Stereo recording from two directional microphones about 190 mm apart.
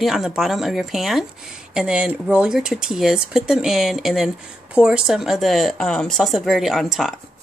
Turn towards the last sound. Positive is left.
turn(degrees=0)  # may be behind; listen again after turning